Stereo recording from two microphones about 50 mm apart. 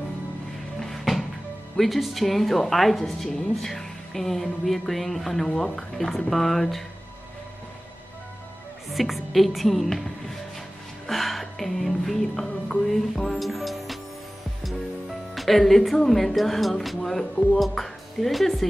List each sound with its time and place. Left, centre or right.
0.7 s music: centre
1.8 s a woman's voice: centre
8.9 s a woman's voice: centre
11.1 s music: centre
15.3 s a woman's voice: centre